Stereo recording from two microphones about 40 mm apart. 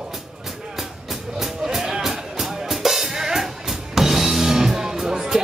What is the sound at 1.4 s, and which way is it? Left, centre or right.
Music, centre.